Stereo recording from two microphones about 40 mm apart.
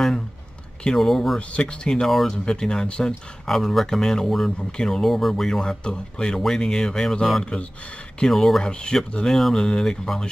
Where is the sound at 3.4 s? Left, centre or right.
Centre.